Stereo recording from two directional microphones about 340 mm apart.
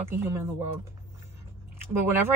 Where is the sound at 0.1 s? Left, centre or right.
Centre.